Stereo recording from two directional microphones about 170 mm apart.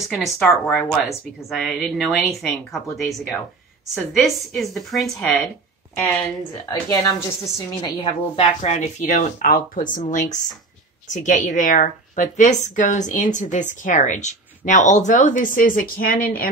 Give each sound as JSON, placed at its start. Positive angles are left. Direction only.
{"t": 0.1, "sound": "a woman's voice", "side_deg": 0}
{"t": 6.7, "sound": "a woman's voice", "side_deg": 20}
{"t": 8.0, "sound": "a woman's voice", "side_deg": 35}
{"t": 11.2, "sound": "a woman's voice", "side_deg": 50}